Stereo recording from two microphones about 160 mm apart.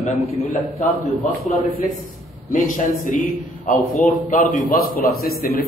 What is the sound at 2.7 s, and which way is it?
A man's voice, 55° left (ahead or behind).